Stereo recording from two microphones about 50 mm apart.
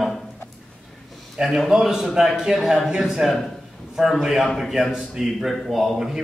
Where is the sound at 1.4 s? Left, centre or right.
Centre.